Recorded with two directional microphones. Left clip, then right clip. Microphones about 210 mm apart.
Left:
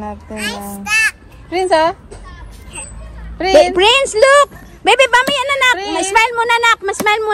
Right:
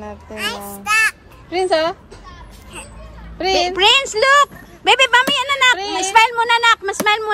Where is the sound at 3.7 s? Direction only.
Centre (ahead or behind).